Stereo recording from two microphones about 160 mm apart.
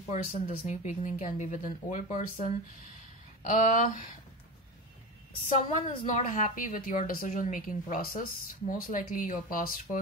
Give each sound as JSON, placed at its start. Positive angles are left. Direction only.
{"t": 0.1, "sound": "speech", "side_deg": 50}
{"t": 5.9, "sound": "speech", "side_deg": 50}